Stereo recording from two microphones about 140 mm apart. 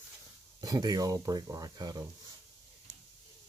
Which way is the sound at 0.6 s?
25° right (ahead or behind).